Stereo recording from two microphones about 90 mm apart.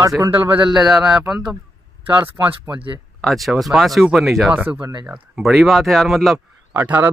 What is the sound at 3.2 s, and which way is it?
Speech, centre (ahead or behind).